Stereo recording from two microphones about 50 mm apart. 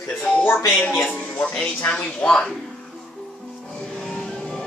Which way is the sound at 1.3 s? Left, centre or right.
Left.